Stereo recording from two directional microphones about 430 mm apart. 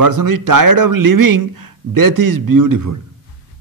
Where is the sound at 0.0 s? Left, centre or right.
Right.